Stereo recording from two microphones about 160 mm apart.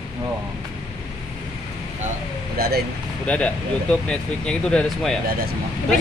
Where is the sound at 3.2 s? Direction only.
10° left (ahead or behind).